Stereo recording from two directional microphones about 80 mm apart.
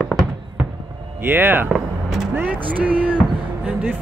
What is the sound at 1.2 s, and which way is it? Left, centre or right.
Speech, right.